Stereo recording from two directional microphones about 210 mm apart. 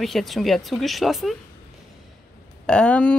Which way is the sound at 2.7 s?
5° left (ahead or behind).